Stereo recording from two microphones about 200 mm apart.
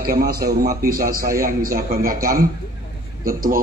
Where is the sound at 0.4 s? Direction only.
50° right (ahead or behind).